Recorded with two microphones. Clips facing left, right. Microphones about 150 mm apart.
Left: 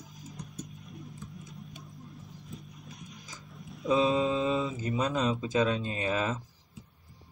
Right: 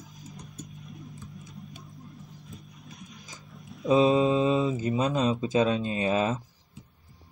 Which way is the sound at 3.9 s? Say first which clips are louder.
Right 5 dB; 20° right (ahead or behind).